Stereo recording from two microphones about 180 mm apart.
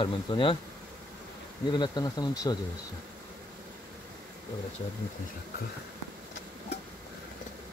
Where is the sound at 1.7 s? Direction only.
25° left (ahead or behind).